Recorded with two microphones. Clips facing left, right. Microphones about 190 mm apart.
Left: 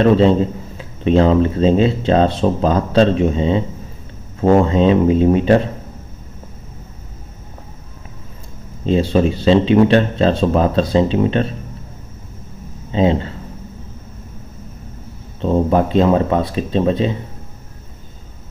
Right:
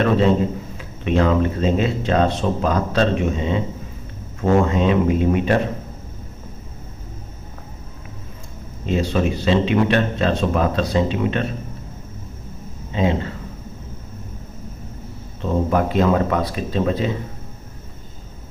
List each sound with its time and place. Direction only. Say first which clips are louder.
0.7 s speech: left 6 dB; 30° left (ahead or behind)
8.8 s speech: left 5 dB; 30° left (ahead or behind)
12.9 s speech: left 5 dB; 30° left (ahead or behind)
15.4 s speech: left 4 dB; 25° left (ahead or behind)